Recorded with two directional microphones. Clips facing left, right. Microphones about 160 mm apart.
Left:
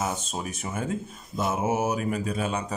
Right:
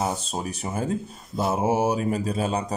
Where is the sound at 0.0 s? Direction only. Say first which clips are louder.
Right 3 dB; 35° right (ahead or behind).